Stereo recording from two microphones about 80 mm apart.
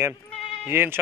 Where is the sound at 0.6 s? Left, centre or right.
Right.